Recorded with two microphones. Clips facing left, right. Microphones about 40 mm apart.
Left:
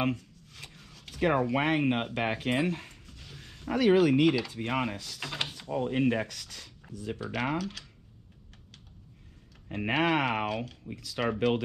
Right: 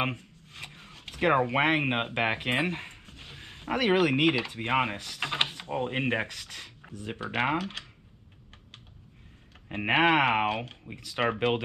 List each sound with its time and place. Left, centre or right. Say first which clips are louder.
0.0 s speech: left 1 dB; right
9.7 s speech: right 4 dB; right